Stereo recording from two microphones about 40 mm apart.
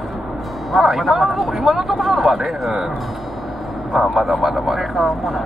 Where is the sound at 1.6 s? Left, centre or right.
Centre.